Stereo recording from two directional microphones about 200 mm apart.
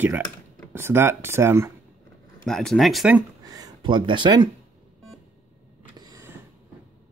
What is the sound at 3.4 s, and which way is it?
Speech, 20° right (ahead or behind).